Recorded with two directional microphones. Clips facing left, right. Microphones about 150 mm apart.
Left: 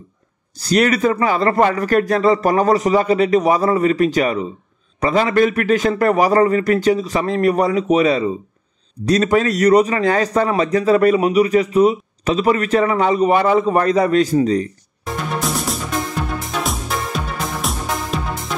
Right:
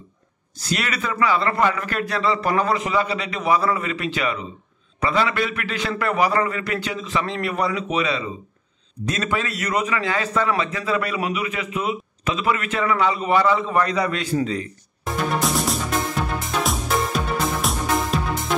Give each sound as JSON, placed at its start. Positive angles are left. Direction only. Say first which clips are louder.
{"t": 0.6, "sound": "a man's voice", "louder": "left 11 dB", "side_deg": 40}
{"t": 15.3, "sound": "music", "louder": "left 1 dB", "side_deg": 0}